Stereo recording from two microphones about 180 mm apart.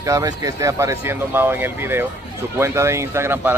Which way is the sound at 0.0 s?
20° right (ahead or behind).